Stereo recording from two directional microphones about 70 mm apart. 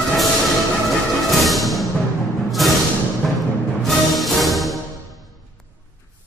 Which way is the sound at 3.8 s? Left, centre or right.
Centre.